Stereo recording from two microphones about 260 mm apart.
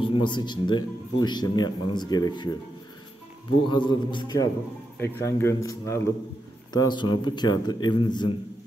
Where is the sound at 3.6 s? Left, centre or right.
Centre.